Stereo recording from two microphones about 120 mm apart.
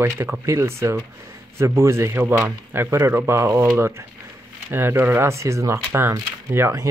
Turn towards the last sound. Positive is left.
turn(degrees=-25)  # may be behind; listen again after turning